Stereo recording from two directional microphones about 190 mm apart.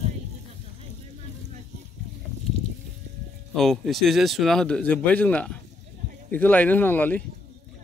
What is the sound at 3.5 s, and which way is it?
Speech, centre (ahead or behind).